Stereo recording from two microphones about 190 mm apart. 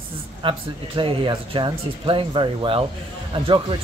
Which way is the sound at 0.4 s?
25° right (ahead or behind).